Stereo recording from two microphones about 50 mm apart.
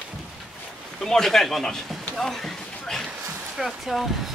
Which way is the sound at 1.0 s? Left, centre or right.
Centre.